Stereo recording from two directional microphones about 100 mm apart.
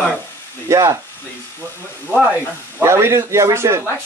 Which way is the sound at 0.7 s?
30° right (ahead or behind).